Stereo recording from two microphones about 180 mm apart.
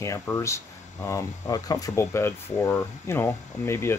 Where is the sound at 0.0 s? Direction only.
15° left (ahead or behind).